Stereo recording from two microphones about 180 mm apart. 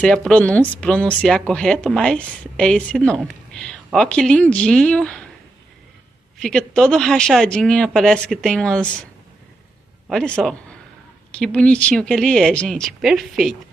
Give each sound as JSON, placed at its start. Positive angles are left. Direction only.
{"t": 0.0, "sound": "speech", "side_deg": 5}
{"t": 6.4, "sound": "speech", "side_deg": 5}
{"t": 10.0, "sound": "a man's voice", "side_deg": 5}